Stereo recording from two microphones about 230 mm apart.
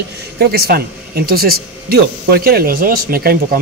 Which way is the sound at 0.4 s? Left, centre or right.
Right.